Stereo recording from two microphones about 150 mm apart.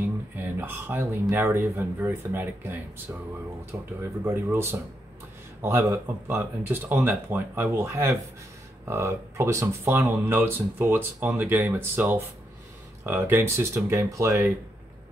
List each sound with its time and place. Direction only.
0.6 s speech: 15° right (ahead or behind)